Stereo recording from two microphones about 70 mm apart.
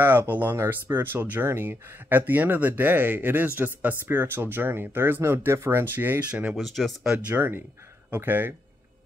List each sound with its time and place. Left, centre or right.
0.0 s speech: right
6.5 s speech: centre
7.2 s speech: right